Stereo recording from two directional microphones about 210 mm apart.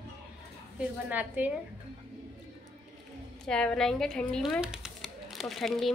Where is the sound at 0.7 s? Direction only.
10° right (ahead or behind).